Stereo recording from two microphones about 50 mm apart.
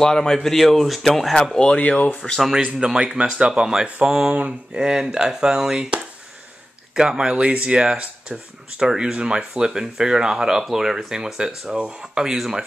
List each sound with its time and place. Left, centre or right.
0.0 s speech: centre
1.7 s speech: left
2.5 s speech: centre
4.3 s speech: right
4.7 s speech: centre
7.0 s speech: centre